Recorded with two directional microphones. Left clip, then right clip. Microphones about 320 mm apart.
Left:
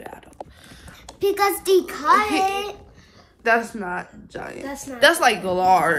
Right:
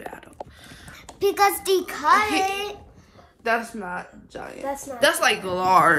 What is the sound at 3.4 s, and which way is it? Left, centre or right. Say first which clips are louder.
A woman's voice: left 4 dB; left.